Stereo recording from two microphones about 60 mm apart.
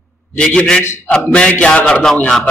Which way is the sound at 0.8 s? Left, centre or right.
Left.